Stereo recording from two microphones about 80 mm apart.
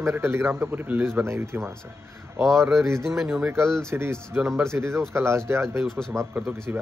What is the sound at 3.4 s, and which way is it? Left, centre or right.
A man's voice, right.